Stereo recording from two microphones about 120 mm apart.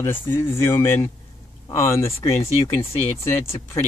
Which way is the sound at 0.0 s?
20° left (ahead or behind).